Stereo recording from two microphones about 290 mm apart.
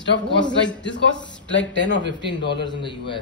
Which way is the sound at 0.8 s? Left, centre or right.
Left.